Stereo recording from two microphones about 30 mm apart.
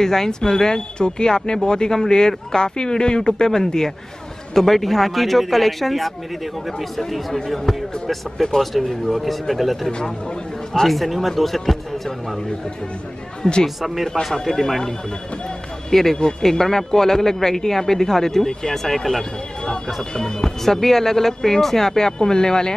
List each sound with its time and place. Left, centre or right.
0.0 s speech: centre
4.6 s speech: centre
9.8 s speech: left
10.9 s speech: centre
13.4 s speech: left
13.7 s speech: centre
14.4 s speech: centre
15.9 s speech: centre
16.2 s speech: left
16.4 s speech: centre
20.0 s speech: left
20.6 s speech: centre